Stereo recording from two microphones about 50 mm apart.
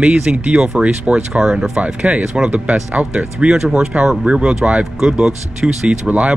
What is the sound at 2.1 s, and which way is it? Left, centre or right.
Speech, right.